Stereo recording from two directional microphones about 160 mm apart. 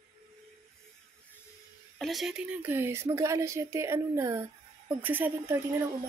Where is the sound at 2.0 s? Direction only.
Centre (ahead or behind).